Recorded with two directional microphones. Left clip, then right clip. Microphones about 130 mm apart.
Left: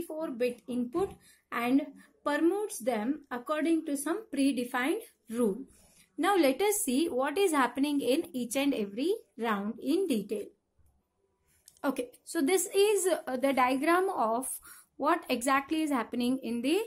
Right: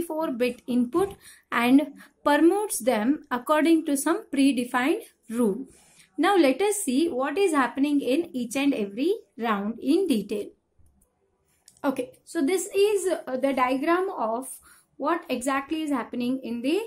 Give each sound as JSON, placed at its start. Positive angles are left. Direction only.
{"t": 0.1, "sound": "a woman's voice", "side_deg": -15}
{"t": 6.9, "sound": "a woman's voice", "side_deg": 20}
{"t": 11.8, "sound": "a woman's voice", "side_deg": 25}